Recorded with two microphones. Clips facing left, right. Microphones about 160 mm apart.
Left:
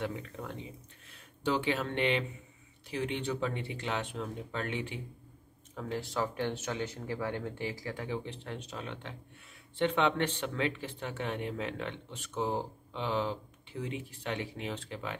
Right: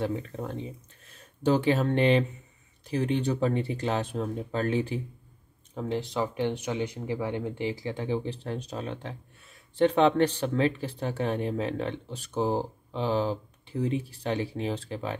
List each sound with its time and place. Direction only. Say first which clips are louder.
0.0 s speech: right 7 dB; 35° right (ahead or behind)
5.8 s speech: right 5 dB; 20° right (ahead or behind)